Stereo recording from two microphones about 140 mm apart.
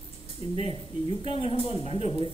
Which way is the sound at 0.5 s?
45° left (ahead or behind).